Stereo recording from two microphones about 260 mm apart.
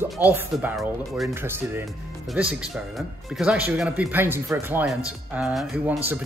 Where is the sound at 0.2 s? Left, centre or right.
Centre.